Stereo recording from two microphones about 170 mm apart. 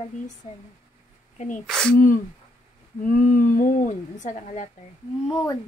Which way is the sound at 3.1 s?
50° left (ahead or behind).